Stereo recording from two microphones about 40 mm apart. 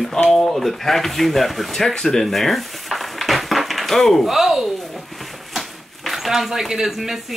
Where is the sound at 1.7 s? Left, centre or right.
Centre.